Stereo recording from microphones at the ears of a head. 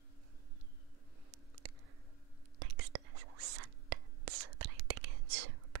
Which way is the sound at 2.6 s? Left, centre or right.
Right.